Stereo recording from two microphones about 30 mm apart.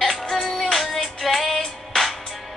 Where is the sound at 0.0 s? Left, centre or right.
Centre.